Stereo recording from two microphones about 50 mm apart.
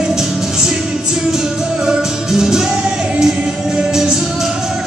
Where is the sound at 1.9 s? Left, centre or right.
Centre.